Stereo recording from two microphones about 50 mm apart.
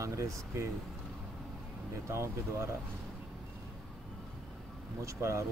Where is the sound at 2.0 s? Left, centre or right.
Right.